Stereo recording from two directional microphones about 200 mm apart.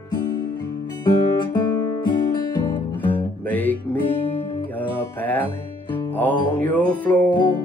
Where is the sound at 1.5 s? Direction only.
20° left (ahead or behind).